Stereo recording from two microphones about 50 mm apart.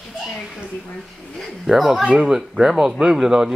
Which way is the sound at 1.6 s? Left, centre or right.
Centre.